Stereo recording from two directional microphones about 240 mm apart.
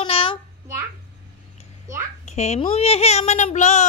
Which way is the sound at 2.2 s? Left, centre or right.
Left.